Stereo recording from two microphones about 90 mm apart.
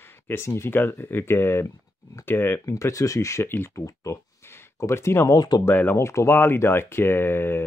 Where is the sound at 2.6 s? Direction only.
35° left (ahead or behind).